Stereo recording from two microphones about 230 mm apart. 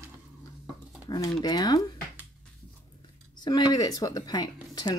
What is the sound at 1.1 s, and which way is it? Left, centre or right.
Speech, centre.